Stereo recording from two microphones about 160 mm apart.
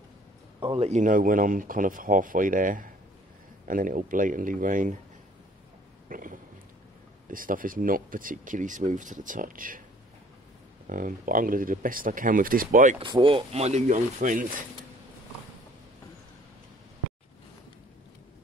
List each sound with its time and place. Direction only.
0.6 s speech: 35° right (ahead or behind); by 4.9 s 55° right (ahead or behind)
6.0 s a sound: 60° right (ahead or behind)
7.2 s speech: 60° right (ahead or behind)
10.9 s speech: 60° right (ahead or behind)
13.0 s speech: 30° right (ahead or behind); by 14.5 s 55° right (ahead or behind)